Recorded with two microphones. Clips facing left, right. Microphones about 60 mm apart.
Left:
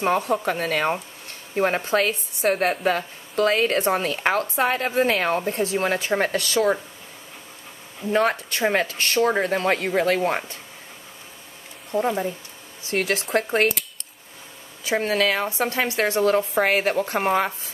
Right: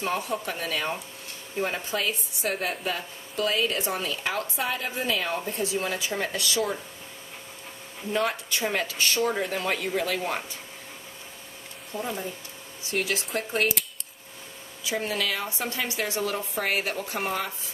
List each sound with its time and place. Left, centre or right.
0.0 s a woman's voice: left
8.1 s a woman's voice: left
11.9 s speech: left
12.9 s a woman's voice: left
14.9 s a woman's voice: left